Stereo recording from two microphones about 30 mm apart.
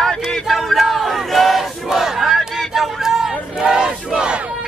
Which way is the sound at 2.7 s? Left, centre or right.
Centre.